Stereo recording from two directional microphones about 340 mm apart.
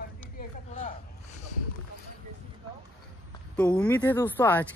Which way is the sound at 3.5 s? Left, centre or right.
Centre.